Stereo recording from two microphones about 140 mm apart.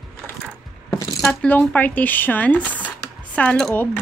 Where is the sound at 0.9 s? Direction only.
20° left (ahead or behind).